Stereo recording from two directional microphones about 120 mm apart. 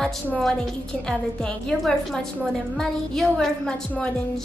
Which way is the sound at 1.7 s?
5° left (ahead or behind).